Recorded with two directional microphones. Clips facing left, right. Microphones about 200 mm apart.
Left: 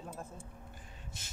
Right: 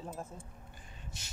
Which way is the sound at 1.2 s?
50° left (ahead or behind).